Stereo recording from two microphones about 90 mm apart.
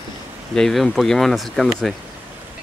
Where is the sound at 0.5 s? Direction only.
5° left (ahead or behind).